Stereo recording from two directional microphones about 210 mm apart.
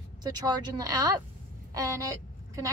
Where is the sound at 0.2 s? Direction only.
20° right (ahead or behind).